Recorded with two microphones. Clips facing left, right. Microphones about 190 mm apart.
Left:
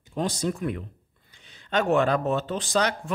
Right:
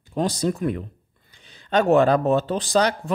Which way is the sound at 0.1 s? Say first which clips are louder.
Right 4 dB; 35° right (ahead or behind).